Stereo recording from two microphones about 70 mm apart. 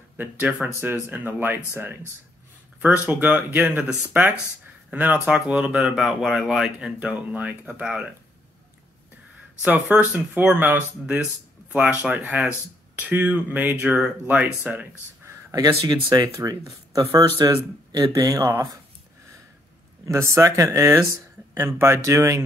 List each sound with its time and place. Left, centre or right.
0.2 s speech: right
5.3 s speech: centre
7.0 s speech: right
9.7 s speech: right
15.5 s speech: right
16.3 s speech: right
17.4 s speech: right
17.9 s speech: right
20.1 s speech: right
20.8 s speech: right